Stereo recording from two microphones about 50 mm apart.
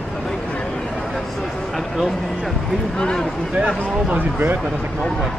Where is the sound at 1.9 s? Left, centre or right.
Centre.